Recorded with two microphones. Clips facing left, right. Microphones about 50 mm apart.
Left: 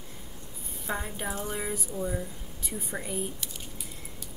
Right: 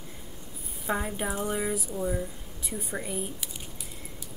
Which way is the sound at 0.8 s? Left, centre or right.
Centre.